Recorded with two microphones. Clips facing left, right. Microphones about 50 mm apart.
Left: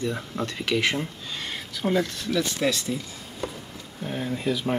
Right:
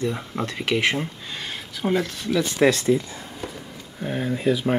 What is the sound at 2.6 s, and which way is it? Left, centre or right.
Speech, right.